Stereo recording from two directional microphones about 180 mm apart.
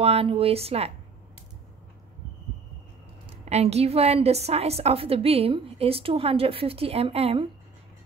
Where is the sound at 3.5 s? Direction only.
35° right (ahead or behind).